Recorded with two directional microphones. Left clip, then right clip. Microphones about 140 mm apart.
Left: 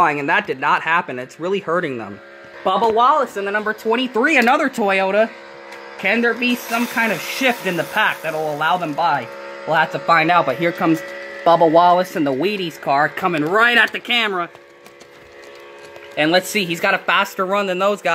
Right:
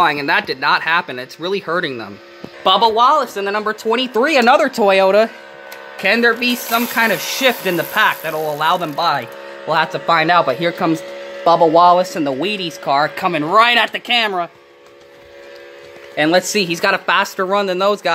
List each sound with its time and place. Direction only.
0.0 s speech: 10° left (ahead or behind)
2.6 s speech: 10° right (ahead or behind)
3.4 s speech: 20° right (ahead or behind)
4.8 s speech: 30° right (ahead or behind)
9.8 s speech: 10° right (ahead or behind)
13.7 s speech: 15° right (ahead or behind)
16.2 s speech: 20° right (ahead or behind)